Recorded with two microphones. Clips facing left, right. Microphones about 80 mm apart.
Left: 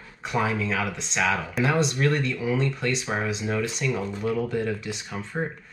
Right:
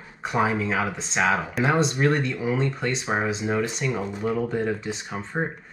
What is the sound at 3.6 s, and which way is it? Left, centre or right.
Speech, centre.